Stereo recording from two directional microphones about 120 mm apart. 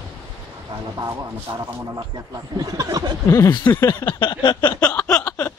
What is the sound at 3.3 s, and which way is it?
Speech, 25° left (ahead or behind).